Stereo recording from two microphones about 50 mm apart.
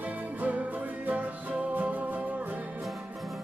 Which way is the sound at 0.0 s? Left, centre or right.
Right.